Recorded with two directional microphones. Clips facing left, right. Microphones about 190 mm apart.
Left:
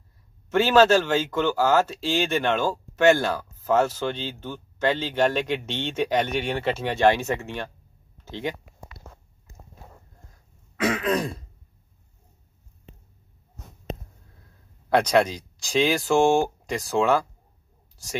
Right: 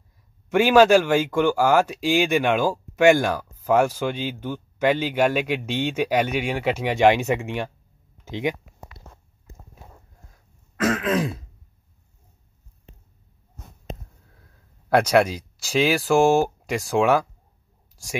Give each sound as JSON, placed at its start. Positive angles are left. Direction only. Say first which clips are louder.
{"t": 0.5, "sound": "speech", "louder": "right 3 dB", "side_deg": -15}
{"t": 10.8, "sound": "throat clearing", "louder": "right 2 dB", "side_deg": 0}
{"t": 14.9, "sound": "speech", "louder": "right 2 dB", "side_deg": -10}